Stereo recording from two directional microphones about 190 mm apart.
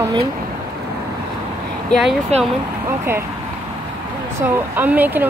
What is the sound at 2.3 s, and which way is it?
Speech, 35° right (ahead or behind).